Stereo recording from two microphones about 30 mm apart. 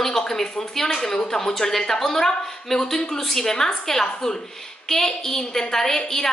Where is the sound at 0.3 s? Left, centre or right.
Centre.